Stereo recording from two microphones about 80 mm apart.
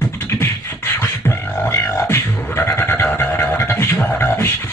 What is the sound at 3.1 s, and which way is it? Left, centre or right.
Music, left.